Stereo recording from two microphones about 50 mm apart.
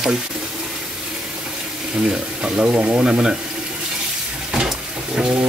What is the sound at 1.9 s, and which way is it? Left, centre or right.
Speech, right.